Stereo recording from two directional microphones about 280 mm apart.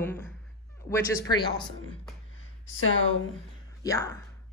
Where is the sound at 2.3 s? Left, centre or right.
Left.